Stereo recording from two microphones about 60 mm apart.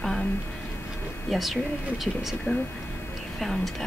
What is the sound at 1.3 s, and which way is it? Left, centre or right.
Speech, centre.